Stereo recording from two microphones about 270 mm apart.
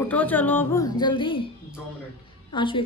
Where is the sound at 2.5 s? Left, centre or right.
Centre.